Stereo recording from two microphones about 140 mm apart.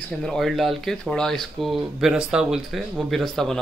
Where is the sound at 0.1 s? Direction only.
5° left (ahead or behind).